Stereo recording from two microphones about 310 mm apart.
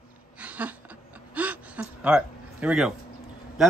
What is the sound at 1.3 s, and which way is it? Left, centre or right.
Gasp, centre.